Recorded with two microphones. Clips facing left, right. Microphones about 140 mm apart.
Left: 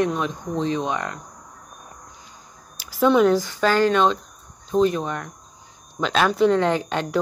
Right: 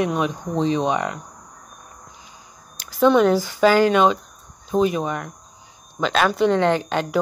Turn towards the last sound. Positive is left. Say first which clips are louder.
# right 2 dB
turn(degrees=0)  # may be behind; listen again after turning